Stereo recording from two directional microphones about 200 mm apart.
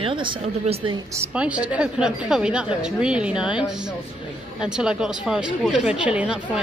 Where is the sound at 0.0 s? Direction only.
25° right (ahead or behind).